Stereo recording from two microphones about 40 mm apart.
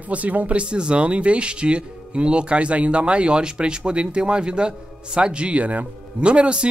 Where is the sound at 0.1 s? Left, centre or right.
Right.